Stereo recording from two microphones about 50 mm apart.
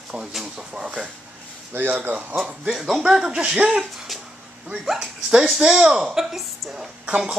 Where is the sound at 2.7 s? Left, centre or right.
Centre.